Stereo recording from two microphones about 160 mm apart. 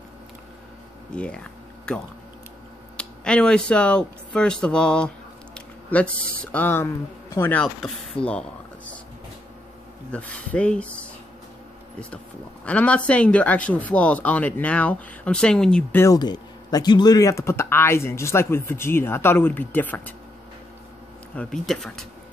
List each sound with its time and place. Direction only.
1.1 s a sound: 5° left (ahead or behind)
3.0 s speech: 5° left (ahead or behind)
10.1 s speech: 5° left (ahead or behind)
12.6 s speech: 10° left (ahead or behind)
16.2 s speech: 25° left (ahead or behind)
21.4 s speech: 5° left (ahead or behind)